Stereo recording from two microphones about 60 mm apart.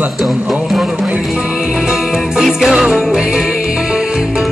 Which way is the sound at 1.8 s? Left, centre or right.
Centre.